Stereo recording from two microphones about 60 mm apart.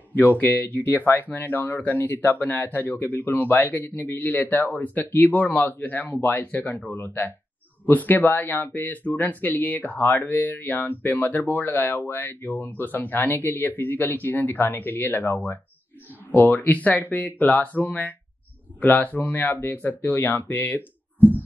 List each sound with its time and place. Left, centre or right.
0.2 s speech: left